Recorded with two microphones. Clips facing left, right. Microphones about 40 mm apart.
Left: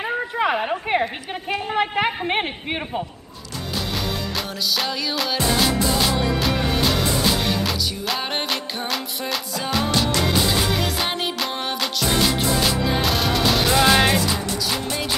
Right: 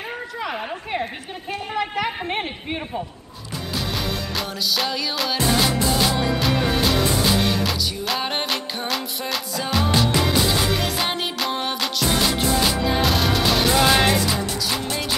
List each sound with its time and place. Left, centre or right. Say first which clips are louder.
0.4 s a sound: left 7 dB; left
1.8 s a woman's voice: left 3 dB; left
3.7 s music: even; centre